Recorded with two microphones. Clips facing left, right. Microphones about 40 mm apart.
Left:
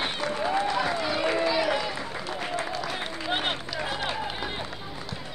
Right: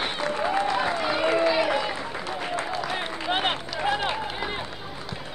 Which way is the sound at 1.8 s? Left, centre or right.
Right.